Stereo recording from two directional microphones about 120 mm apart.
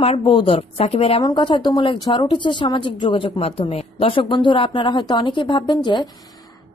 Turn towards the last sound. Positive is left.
turn(degrees=40)  # may be behind; listen again after turning